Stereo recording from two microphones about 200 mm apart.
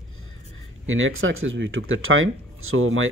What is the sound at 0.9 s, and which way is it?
Speech, 80° right.